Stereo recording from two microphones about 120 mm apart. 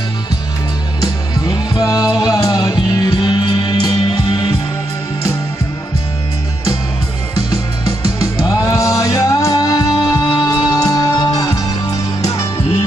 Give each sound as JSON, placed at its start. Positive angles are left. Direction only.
{"t": 1.8, "sound": "music", "side_deg": 30}
{"t": 8.2, "sound": "music", "side_deg": 30}